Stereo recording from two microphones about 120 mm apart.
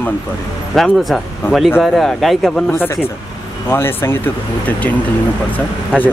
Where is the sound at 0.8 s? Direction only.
Centre (ahead or behind).